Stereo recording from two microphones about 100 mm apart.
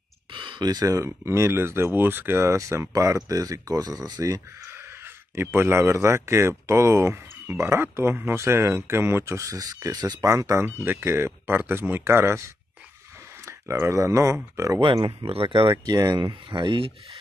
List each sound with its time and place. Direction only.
0.3 s speech: 55° right (ahead or behind); by 4.4 s 40° right (ahead or behind)
5.3 s speech: 25° right (ahead or behind); by 10.1 s 40° right (ahead or behind)
10.2 s speech: 30° right (ahead or behind)
13.5 s speech: 30° right (ahead or behind)
14.8 s speech: 55° right (ahead or behind)
15.8 s speech: 45° right (ahead or behind)